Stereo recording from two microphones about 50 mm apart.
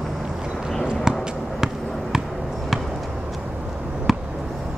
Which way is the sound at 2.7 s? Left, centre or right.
Centre.